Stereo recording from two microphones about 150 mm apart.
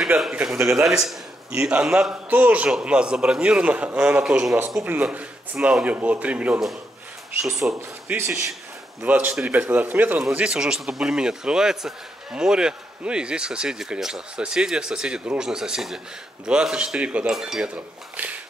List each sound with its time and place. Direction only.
0.2 s a man's voice: 5° right (ahead or behind)
7.7 s a man's voice: 15° right (ahead or behind)